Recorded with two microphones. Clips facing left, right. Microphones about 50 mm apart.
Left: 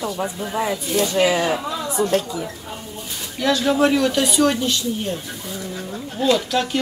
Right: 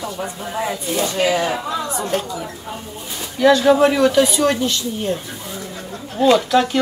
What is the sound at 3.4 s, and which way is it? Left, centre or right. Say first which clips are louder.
Speech: right 5 dB; centre.